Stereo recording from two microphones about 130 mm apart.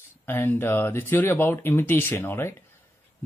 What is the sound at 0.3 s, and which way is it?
Speech, 15° left (ahead or behind).